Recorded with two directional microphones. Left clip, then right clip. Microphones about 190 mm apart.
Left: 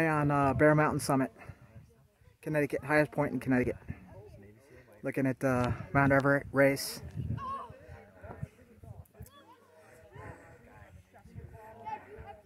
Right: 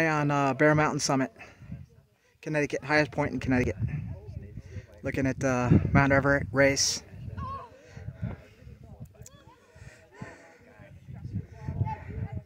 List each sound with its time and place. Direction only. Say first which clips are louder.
0.0 s speech: right 3 dB; 10° right (ahead or behind)
4.7 s speech: right 3 dB; 5° right (ahead or behind)
7.3 s a sound: right 1 dB; 25° right (ahead or behind)